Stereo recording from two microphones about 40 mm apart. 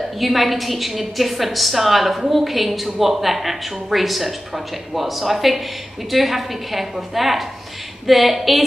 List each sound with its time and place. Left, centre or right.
0.2 s a woman's voice: centre